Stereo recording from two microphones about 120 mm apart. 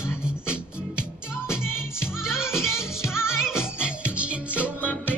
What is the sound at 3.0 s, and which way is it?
Music, 20° left (ahead or behind).